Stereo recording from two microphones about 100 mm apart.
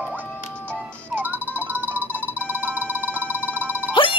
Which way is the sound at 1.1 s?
15° right (ahead or behind).